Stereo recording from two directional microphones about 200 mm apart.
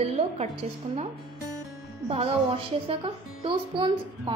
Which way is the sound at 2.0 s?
30° right (ahead or behind).